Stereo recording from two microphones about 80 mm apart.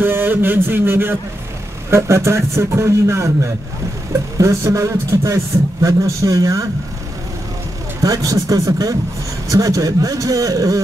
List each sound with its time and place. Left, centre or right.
0.0 s speech: right
4.4 s a man's voice: right
8.0 s a man's voice: right